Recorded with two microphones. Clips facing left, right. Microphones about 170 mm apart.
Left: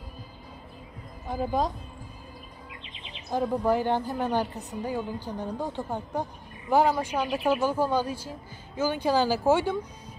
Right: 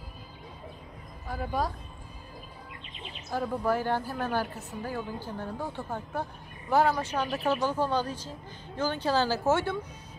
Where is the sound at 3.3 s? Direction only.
20° left (ahead or behind).